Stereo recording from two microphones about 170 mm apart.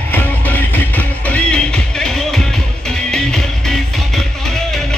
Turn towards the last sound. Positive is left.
turn(degrees=5)  # may be behind; listen again after turning